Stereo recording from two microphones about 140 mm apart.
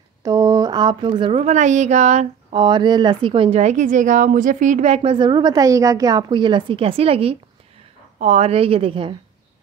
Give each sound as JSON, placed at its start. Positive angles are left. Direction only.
{"t": 0.2, "sound": "a sound", "side_deg": -25}
{"t": 1.4, "sound": "speech", "side_deg": -60}
{"t": 2.5, "sound": "a woman's voice", "side_deg": -35}
{"t": 5.1, "sound": "a woman's voice", "side_deg": -35}